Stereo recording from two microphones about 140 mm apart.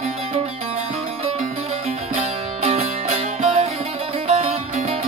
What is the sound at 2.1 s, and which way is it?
Music, 45° right (ahead or behind).